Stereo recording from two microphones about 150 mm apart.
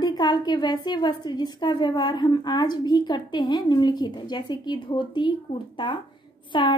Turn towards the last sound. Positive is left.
turn(degrees=30)  # may be behind; listen again after turning